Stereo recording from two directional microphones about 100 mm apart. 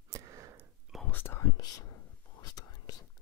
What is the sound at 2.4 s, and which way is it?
Whispering, 40° left (ahead or behind).